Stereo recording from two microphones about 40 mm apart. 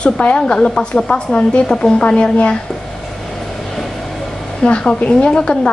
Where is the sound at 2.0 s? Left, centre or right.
Left.